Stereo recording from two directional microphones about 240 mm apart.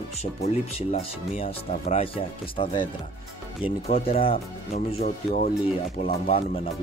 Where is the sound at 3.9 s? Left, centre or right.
Left.